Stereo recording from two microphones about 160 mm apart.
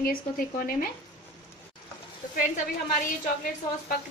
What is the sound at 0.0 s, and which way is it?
Speech, 60° left (ahead or behind).